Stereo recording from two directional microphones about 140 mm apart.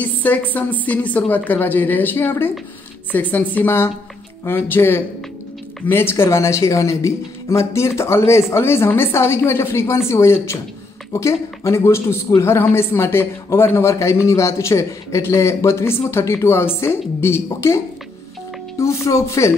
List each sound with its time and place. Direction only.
0.0 s speech: 10° left (ahead or behind)